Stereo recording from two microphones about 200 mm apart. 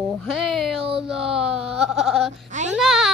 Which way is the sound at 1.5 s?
30° right (ahead or behind).